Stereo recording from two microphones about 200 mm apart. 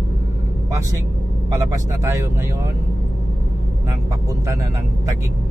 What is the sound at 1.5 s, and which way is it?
Speech, 15° right (ahead or behind).